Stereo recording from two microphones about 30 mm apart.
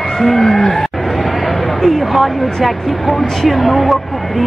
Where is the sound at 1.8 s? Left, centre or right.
Centre.